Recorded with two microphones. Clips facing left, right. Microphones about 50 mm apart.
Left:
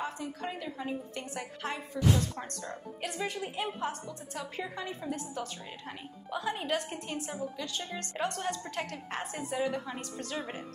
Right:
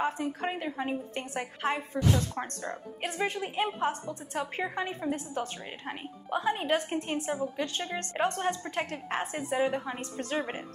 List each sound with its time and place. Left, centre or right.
0.0 s a woman's voice: right